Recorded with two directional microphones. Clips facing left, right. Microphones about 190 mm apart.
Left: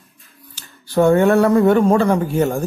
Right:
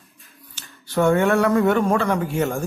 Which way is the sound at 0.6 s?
35° left (ahead or behind).